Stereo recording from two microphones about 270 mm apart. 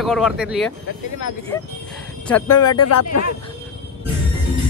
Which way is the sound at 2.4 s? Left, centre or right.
Left.